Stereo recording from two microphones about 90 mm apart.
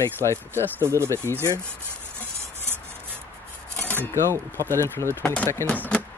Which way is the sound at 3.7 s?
20° left (ahead or behind).